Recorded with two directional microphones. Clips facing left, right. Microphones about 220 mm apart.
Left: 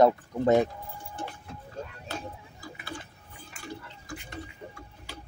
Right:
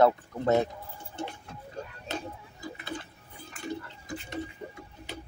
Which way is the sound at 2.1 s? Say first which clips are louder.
Right 3 dB; 20° right (ahead or behind).